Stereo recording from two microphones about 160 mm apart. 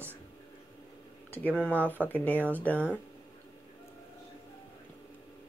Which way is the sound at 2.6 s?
10° left (ahead or behind).